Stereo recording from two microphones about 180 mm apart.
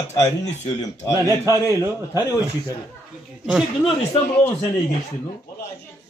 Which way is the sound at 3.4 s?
5° right (ahead or behind).